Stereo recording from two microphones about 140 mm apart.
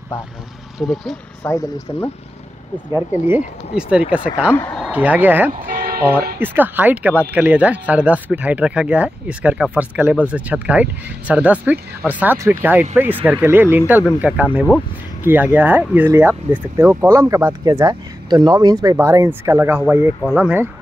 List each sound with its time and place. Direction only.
0.7 s speech: 5° left (ahead or behind)
1.4 s speech: 15° left (ahead or behind)
2.9 s speech: 15° right (ahead or behind)
5.5 s vehicle: 90° right
6.4 s speech: 15° right (ahead or behind)